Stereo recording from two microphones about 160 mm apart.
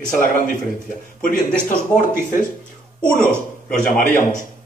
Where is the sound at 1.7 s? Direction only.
60° left (ahead or behind).